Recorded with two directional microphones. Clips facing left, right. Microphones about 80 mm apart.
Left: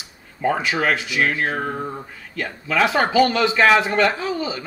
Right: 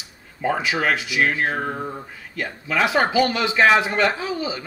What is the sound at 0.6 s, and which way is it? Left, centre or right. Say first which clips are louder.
Speech: left 1 dB; centre.